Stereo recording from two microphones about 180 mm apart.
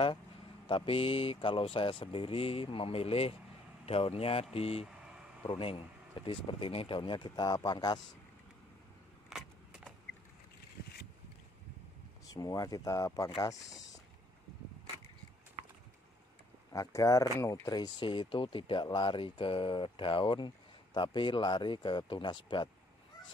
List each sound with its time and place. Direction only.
0.7 s speech: 30° left (ahead or behind)
4.8 s vehicle: 5° right (ahead or behind)
5.5 s speech: 30° left (ahead or behind)
9.3 s a sound: 5° right (ahead or behind)
12.3 s speech: 20° left (ahead or behind)
16.7 s speech: 20° left (ahead or behind)